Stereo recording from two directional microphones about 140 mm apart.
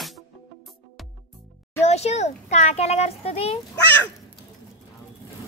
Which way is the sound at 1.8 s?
50° left (ahead or behind).